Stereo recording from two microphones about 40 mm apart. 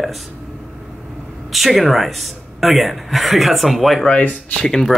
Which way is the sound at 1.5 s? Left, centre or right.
Centre.